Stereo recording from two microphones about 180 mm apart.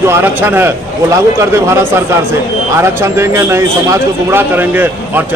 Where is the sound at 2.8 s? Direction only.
15° right (ahead or behind).